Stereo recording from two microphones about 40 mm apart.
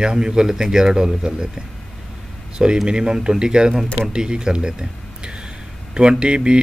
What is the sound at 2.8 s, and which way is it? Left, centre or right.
Speech, right.